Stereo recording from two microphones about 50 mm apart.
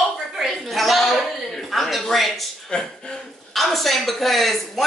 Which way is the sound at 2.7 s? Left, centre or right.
Left.